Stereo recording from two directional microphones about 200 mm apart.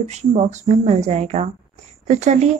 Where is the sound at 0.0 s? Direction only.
35° right (ahead or behind).